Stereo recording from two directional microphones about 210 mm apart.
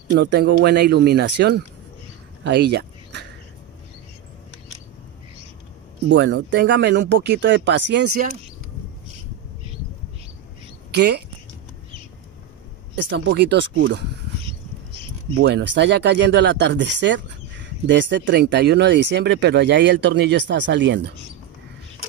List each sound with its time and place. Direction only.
0.1 s speech: 55° right (ahead or behind)
6.0 s speech: 60° right (ahead or behind)
10.9 s speech: 50° right (ahead or behind)
13.1 s speech: 55° right (ahead or behind)
15.4 s speech: 55° right (ahead or behind)